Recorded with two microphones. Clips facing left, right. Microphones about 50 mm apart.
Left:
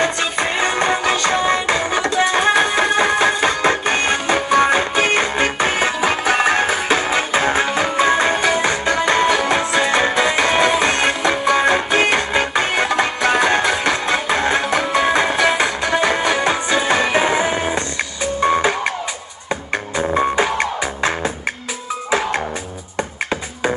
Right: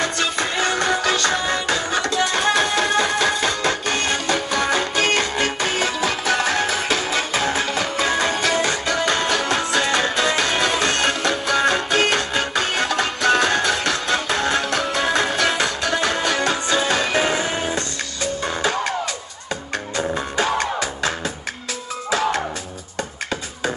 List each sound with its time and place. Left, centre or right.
0.0 s music: left
20.2 s music: left